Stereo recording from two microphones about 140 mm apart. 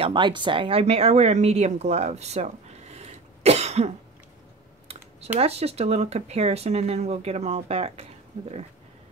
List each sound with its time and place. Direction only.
0.0 s speech: 35° right (ahead or behind); by 3.9 s 50° right (ahead or behind)
5.4 s speech: 45° right (ahead or behind)